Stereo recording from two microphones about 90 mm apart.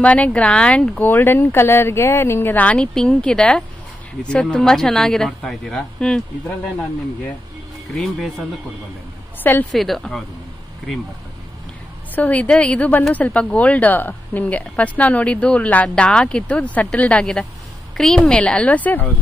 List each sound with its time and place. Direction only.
0.0 s speech: 15° left (ahead or behind)
2.5 s a woman's voice: 15° left (ahead or behind)
7.9 s speech: centre (ahead or behind)
9.4 s a woman's voice: 20° left (ahead or behind)
9.7 s speech: centre (ahead or behind)
12.2 s a woman's voice: 15° left (ahead or behind)